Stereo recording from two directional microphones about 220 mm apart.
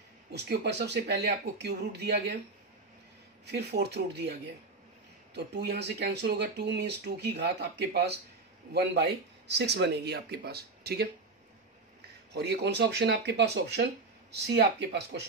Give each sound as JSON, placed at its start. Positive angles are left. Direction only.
{"t": 0.3, "sound": "speech", "side_deg": -50}
{"t": 3.4, "sound": "speech", "side_deg": -50}
{"t": 5.3, "sound": "speech", "side_deg": -50}
{"t": 12.4, "sound": "speech", "side_deg": -50}